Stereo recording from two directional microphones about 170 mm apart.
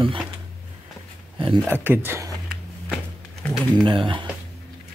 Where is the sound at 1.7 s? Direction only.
10° right (ahead or behind).